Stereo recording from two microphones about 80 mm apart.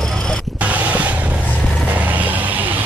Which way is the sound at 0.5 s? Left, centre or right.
Centre.